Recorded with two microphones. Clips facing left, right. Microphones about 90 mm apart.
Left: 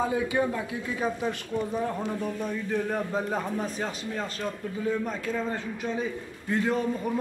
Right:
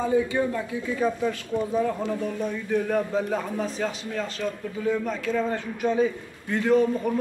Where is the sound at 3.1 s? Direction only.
40° left (ahead or behind).